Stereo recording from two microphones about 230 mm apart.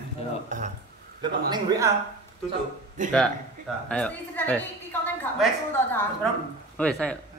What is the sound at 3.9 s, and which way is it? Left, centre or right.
A woman's voice, centre.